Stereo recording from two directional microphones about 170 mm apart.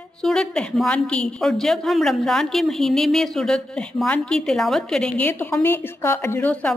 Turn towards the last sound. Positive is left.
turn(degrees=10)  # may be behind; listen again after turning